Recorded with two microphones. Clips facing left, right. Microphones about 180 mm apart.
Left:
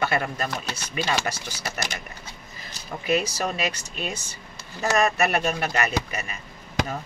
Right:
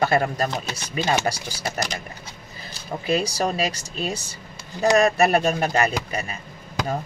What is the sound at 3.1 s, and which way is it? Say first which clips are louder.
A man's voice: right 2 dB; 35° right (ahead or behind).